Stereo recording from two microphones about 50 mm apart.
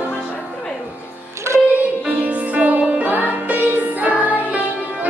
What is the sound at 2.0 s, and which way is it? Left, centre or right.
Music, right.